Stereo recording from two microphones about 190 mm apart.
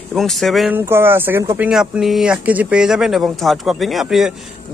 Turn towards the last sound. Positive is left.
turn(degrees=0)  # may be behind; listen again after turning